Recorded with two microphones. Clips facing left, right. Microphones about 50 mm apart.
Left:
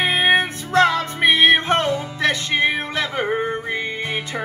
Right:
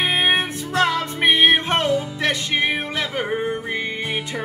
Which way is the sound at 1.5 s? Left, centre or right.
Left.